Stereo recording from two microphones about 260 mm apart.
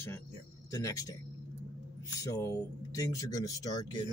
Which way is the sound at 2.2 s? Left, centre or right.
Centre.